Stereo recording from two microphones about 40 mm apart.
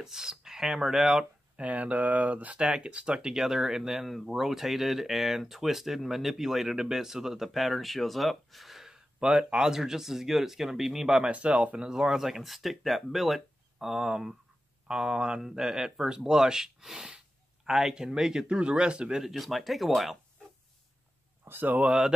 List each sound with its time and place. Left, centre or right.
0.0 s speech: centre
1.6 s speech: right; by 11.2 s centre
11.2 s speech: right
12.0 s speech: centre; by 19.2 s right
19.2 s speech: centre
21.5 s speech: right
21.8 s speech: centre